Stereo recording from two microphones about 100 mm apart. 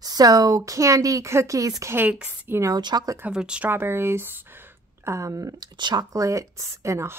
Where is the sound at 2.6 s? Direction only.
45° right (ahead or behind).